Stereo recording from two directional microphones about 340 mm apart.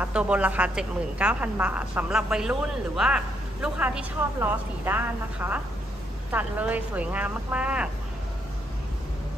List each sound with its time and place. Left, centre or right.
0.0 s a woman's voice: centre